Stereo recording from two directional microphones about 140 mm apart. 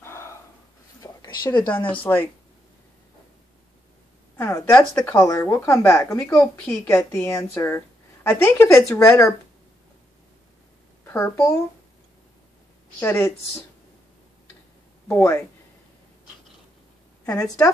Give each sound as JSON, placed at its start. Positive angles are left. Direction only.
{"t": 0.0, "sound": "a sound", "side_deg": 20}
{"t": 1.0, "sound": "a sound", "side_deg": 30}
{"t": 2.1, "sound": "speech", "side_deg": 20}
{"t": 4.4, "sound": "a woman's voice", "side_deg": 20}
{"t": 11.1, "sound": "speech", "side_deg": 20}
{"t": 13.0, "sound": "speech", "side_deg": 20}
{"t": 15.0, "sound": "a woman's voice", "side_deg": 15}
{"t": 17.3, "sound": "speech", "side_deg": 25}